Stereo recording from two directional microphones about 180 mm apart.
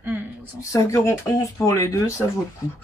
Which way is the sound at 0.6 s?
15° left (ahead or behind).